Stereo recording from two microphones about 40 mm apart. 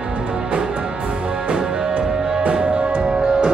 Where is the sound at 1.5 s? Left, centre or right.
Right.